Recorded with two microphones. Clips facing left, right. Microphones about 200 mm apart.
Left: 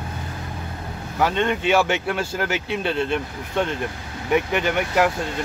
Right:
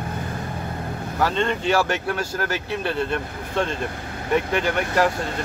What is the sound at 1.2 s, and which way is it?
Speech, 15° left (ahead or behind).